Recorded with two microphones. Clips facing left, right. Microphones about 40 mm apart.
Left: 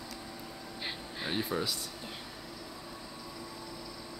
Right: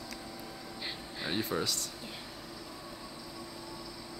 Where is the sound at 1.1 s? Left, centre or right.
Centre.